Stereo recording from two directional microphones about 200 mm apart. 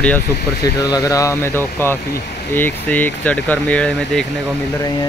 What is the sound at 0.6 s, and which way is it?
Speech, 20° left (ahead or behind).